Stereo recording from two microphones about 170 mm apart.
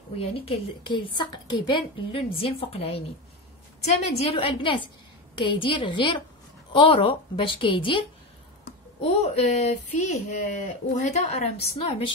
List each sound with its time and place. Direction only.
0.1 s speech: 35° left (ahead or behind)
4.2 s speech: 35° left (ahead or behind)
9.0 s speech: 40° left (ahead or behind)